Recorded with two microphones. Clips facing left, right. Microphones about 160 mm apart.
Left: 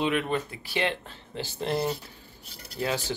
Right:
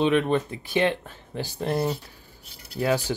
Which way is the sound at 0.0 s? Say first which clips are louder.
Right 5 dB; 25° right (ahead or behind).